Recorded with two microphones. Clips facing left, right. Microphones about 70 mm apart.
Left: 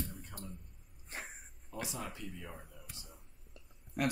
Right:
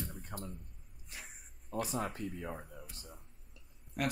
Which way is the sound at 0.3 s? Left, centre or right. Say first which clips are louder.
Right 4 dB; right.